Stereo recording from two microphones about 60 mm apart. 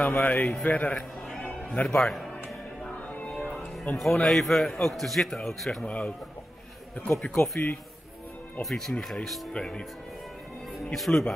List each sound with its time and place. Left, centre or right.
0.2 s a man's voice: left
1.4 s music: centre
3.3 s music: centre
3.9 s a man's voice: centre
5.9 s a man's voice: centre
8.6 s a man's voice: centre
9.5 s speech: centre
10.9 s speech: centre